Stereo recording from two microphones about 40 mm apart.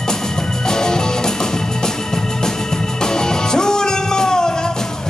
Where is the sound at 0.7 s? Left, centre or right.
Centre.